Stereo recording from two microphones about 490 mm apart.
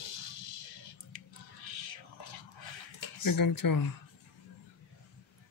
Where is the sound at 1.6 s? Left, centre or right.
Left.